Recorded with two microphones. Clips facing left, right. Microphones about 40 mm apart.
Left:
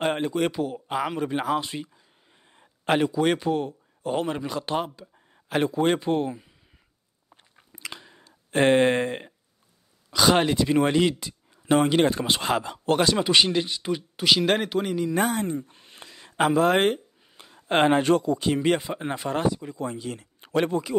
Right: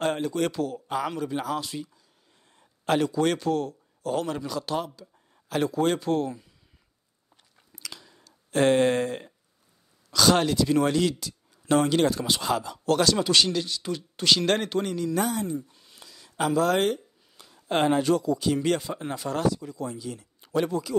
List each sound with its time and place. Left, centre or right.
0.0 s speech: left
0.3 s speech: centre
2.5 s a sound: left
3.1 s speech: centre
7.5 s a sound: left
10.1 s speech: left
14.1 s speech: centre
15.1 s speech: left